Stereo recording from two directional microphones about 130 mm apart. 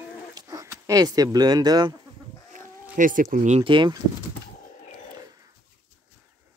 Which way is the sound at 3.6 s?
40° right (ahead or behind).